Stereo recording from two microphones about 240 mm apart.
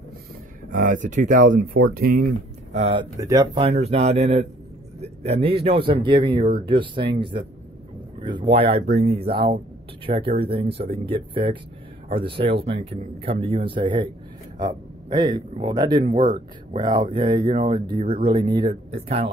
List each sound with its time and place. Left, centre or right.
0.7 s speech: right; by 3.4 s centre
3.5 s speech: right
15.0 s speech: centre